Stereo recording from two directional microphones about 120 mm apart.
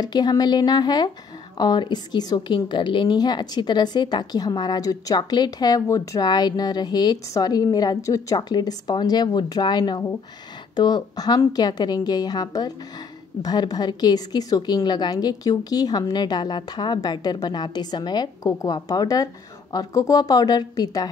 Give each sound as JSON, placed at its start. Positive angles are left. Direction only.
{"t": 0.0, "sound": "a woman's voice", "side_deg": 35}